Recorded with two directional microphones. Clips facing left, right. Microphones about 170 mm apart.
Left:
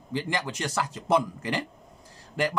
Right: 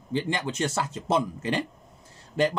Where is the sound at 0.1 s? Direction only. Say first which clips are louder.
Right 2 dB; 25° right (ahead or behind).